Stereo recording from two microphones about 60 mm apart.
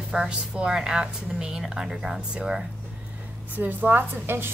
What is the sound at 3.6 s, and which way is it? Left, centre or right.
Speech, right.